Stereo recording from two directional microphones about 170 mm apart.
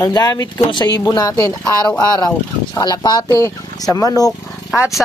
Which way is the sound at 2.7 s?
25° left (ahead or behind).